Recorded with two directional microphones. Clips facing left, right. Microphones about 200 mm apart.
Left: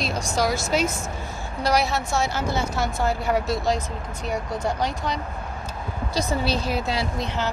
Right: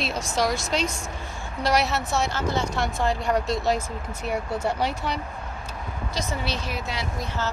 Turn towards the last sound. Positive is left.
turn(degrees=20)  # may be behind; listen again after turning